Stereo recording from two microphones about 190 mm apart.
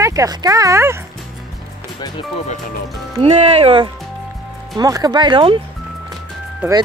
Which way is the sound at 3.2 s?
30° right (ahead or behind).